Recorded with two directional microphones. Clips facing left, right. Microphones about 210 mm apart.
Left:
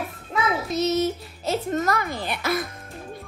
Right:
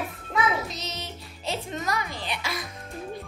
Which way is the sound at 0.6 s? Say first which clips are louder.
Left 15 dB; 50° left (ahead or behind).